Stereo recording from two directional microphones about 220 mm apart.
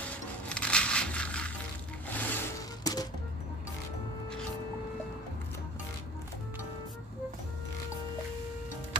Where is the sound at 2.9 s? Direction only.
15° left (ahead or behind).